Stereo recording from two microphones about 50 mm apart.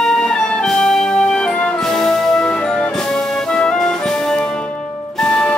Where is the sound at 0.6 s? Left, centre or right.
Centre.